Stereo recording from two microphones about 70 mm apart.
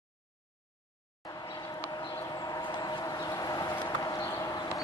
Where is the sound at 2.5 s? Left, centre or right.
Left.